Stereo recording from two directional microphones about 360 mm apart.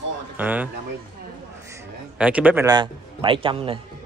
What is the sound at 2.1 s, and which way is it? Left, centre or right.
Speech, centre.